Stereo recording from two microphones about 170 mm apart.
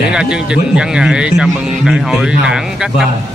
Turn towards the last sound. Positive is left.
turn(degrees=0)  # may be behind; listen again after turning